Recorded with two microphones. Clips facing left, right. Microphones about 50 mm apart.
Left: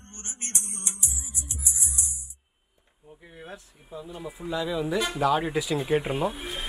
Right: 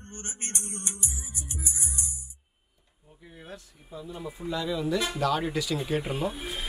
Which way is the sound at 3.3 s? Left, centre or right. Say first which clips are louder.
Left 2 dB; left.